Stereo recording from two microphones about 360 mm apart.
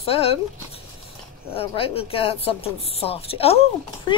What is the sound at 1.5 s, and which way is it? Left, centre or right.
Speech, centre.